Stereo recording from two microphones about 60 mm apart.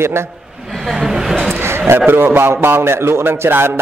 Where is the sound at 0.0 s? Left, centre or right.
Right.